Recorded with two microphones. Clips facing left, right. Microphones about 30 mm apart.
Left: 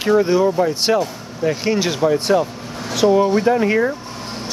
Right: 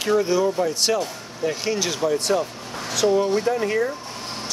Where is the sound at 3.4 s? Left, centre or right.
Left.